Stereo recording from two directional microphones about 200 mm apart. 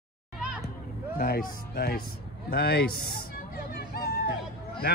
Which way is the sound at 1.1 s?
45° left (ahead or behind).